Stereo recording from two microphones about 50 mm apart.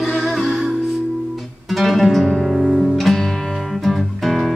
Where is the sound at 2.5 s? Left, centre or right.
Centre.